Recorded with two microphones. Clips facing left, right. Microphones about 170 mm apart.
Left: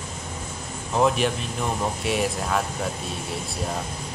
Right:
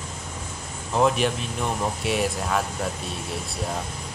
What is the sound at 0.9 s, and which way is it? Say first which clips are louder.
Speech: even; centre (ahead or behind).